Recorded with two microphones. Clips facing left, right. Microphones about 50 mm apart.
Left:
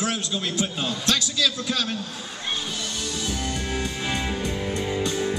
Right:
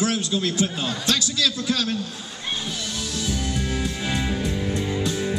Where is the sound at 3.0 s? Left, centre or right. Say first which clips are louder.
Right 2 dB; centre.